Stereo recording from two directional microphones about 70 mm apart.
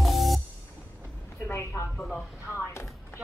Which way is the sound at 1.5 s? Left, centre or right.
Left.